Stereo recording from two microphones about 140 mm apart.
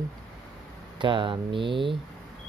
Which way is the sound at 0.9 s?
35° right (ahead or behind).